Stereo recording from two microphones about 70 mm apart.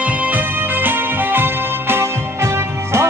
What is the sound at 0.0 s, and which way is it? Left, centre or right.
Music, right.